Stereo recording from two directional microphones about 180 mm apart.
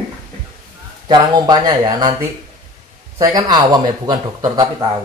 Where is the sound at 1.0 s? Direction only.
20° right (ahead or behind).